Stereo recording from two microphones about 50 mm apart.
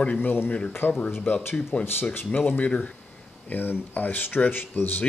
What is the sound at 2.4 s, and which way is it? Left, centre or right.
Speech, left.